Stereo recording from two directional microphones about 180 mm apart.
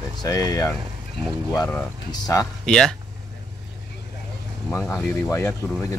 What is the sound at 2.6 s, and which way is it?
Speech, 5° left (ahead or behind).